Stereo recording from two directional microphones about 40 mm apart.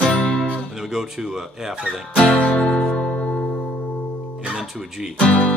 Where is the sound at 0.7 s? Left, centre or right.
Centre.